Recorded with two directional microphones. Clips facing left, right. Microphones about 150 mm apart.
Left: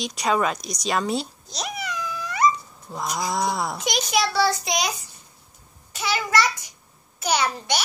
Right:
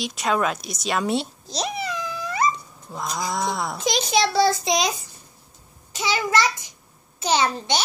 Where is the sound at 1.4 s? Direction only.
30° right (ahead or behind).